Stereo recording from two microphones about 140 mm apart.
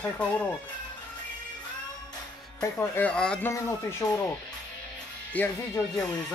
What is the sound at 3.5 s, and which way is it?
Speech, 20° left (ahead or behind).